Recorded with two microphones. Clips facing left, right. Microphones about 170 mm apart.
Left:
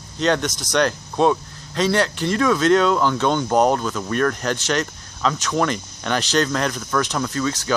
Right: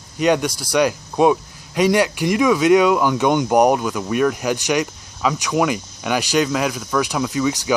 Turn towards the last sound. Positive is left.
turn(degrees=-15)  # may be behind; listen again after turning